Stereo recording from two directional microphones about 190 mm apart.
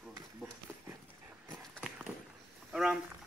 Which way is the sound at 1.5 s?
Centre (ahead or behind).